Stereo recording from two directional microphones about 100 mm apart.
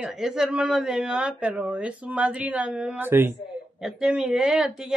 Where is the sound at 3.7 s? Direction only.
5° right (ahead or behind).